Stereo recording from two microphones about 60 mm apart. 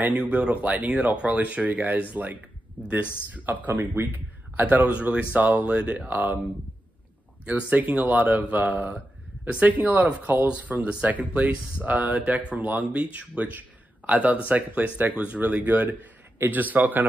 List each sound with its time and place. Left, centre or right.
0.0 s speech: right
7.7 s speech: right